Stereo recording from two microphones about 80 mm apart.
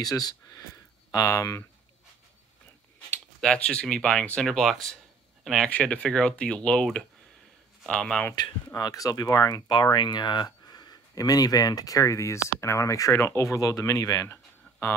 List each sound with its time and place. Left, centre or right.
0.0 s speech: left
3.3 s speech: centre
5.7 s speech: centre
8.7 s speech: left
14.3 s a sound: left